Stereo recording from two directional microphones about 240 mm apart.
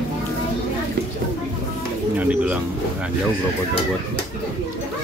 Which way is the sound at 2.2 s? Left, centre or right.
Centre.